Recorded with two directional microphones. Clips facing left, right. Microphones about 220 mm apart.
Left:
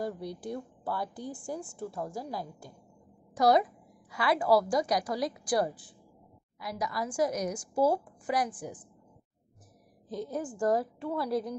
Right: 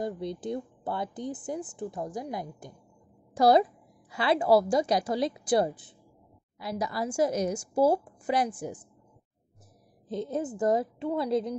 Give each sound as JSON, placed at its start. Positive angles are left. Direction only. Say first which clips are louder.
{"t": 0.0, "sound": "speech", "louder": "right 3 dB", "side_deg": -20}
{"t": 3.3, "sound": "a woman's voice", "louder": "right 3 dB", "side_deg": -30}
{"t": 10.0, "sound": "speech", "louder": "right 4 dB", "side_deg": -25}